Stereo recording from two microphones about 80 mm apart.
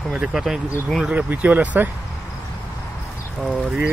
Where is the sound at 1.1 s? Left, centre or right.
Centre.